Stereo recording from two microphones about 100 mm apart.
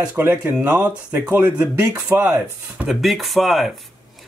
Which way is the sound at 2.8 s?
Centre (ahead or behind).